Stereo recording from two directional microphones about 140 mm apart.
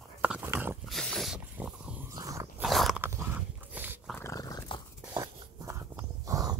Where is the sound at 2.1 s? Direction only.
25° right (ahead or behind).